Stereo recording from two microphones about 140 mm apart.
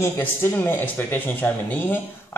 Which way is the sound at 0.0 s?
15° left (ahead or behind).